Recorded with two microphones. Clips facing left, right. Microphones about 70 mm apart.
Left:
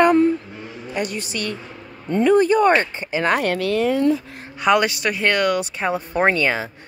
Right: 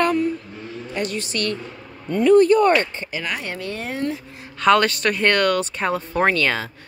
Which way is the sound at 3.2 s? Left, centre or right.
Left.